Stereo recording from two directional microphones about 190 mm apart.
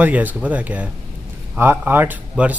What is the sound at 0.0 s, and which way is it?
A man's voice, 10° right (ahead or behind).